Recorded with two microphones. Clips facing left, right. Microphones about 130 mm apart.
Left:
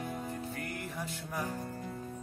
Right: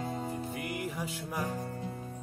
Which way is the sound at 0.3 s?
15° right (ahead or behind).